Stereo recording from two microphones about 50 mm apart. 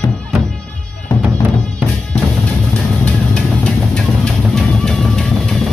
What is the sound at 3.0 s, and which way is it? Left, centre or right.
Music, centre.